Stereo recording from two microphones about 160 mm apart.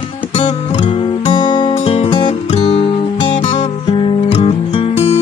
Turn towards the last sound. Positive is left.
turn(degrees=35)  # may be behind; listen again after turning